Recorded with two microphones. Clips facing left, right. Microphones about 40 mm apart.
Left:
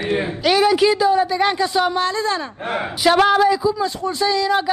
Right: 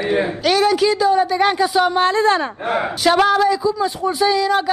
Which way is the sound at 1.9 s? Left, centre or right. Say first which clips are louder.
Right 5 dB; right.